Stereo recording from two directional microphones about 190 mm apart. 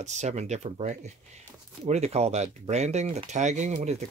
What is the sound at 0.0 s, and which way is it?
Speech, 35° right (ahead or behind).